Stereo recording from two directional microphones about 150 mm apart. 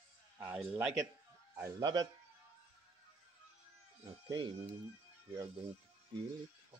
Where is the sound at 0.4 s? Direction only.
10° right (ahead or behind).